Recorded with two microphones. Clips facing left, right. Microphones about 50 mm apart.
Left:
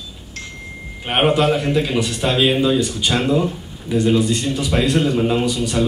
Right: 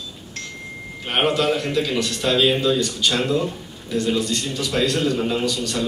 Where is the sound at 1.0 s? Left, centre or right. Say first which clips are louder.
Left 4 dB; centre.